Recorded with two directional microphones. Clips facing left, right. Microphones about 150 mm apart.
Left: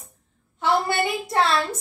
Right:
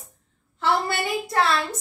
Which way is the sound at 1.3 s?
25° left (ahead or behind).